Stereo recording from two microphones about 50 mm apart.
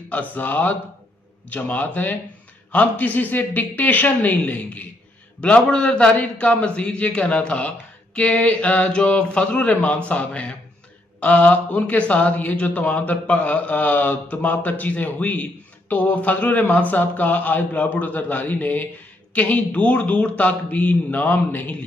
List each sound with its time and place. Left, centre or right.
0.1 s a man's voice: left